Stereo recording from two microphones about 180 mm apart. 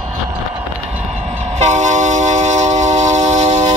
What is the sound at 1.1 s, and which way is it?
Train, 35° right (ahead or behind).